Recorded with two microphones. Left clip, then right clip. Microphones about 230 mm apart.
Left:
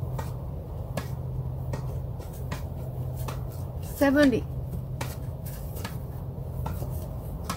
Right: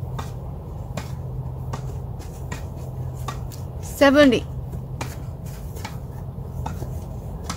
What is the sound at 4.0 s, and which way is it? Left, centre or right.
Speech, right.